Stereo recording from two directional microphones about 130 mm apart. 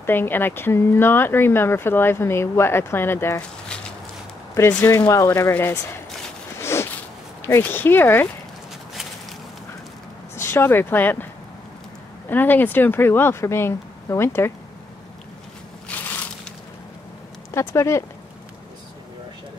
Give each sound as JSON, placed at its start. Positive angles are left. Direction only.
{"t": 0.0, "sound": "speech", "side_deg": 15}
{"t": 4.6, "sound": "speech", "side_deg": 20}
{"t": 6.6, "sound": "a sound", "side_deg": 20}
{"t": 7.4, "sound": "speech", "side_deg": 15}
{"t": 10.3, "sound": "speech", "side_deg": 20}
{"t": 12.3, "sound": "speech", "side_deg": 15}
{"t": 15.9, "sound": "a sound", "side_deg": 10}
{"t": 17.6, "sound": "speech", "side_deg": 20}